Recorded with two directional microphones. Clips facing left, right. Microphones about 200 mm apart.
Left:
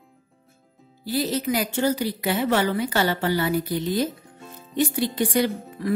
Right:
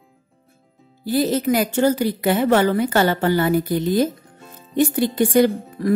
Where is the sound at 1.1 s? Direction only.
50° right (ahead or behind).